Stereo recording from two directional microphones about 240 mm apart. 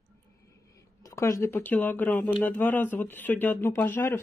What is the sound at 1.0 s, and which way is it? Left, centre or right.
Speech, centre.